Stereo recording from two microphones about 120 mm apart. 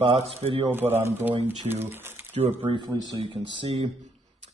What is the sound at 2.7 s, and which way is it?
Speech, 40° right (ahead or behind).